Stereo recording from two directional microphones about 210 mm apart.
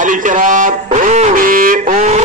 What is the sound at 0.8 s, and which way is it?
Music, 35° right (ahead or behind).